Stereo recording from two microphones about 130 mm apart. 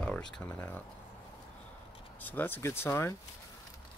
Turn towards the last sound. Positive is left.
turn(degrees=20)  # may be behind; listen again after turning